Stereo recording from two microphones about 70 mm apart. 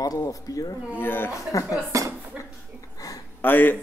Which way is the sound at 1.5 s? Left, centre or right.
Left.